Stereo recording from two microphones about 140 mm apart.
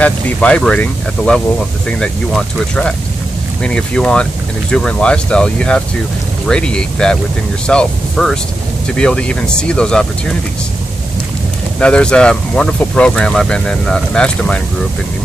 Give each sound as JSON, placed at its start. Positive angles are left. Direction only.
{"t": 0.0, "sound": "speech", "side_deg": 10}
{"t": 11.8, "sound": "speech", "side_deg": 5}